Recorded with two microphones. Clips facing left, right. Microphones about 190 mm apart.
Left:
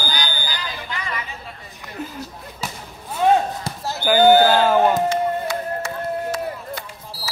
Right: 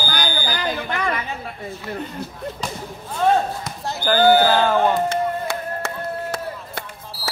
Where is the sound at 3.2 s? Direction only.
15° left (ahead or behind).